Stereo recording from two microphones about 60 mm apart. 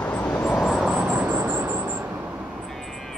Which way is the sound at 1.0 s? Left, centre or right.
Right.